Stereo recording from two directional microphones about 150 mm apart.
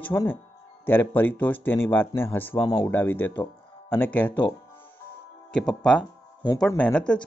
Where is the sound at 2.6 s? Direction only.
25° left (ahead or behind).